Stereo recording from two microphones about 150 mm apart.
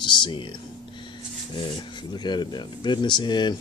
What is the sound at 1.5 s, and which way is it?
Speech, 30° left (ahead or behind).